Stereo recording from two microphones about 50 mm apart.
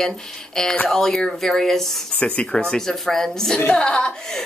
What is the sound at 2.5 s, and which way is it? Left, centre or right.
A woman's voice, centre.